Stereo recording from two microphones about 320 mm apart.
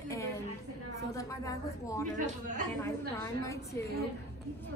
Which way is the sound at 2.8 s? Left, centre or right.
Centre.